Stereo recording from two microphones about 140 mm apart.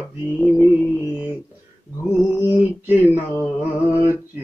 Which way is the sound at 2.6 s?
10° right (ahead or behind).